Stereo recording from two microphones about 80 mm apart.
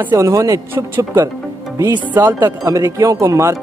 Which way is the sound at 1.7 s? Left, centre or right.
Right.